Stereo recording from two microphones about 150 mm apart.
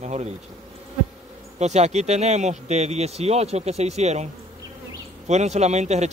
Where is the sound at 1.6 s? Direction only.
50° right (ahead or behind).